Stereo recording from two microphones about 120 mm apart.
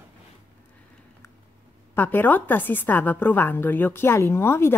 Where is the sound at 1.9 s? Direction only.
15° left (ahead or behind).